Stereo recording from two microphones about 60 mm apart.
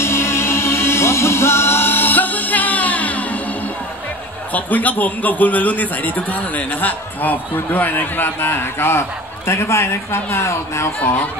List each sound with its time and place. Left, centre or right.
0.0 s music: left
4.6 s a man's voice: left